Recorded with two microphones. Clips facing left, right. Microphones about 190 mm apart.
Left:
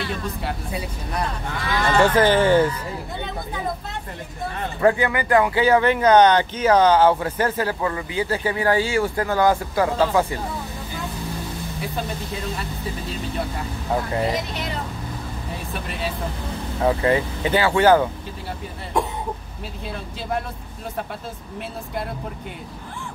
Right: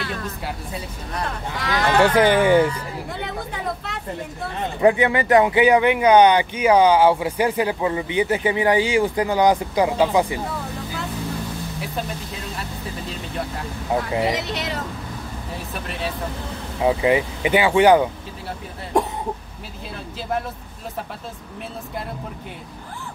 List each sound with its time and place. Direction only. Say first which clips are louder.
0.0 s speech: left 1 dB; centre (ahead or behind)
1.9 s speech: right 1 dB; 10° right (ahead or behind)
4.7 s speech: right 2 dB; 20° right (ahead or behind)
13.9 s speech: right 1 dB; 10° right (ahead or behind)
14.3 s speech: right 1 dB; 80° right
16.8 s speech: right 1 dB; 15° right (ahead or behind)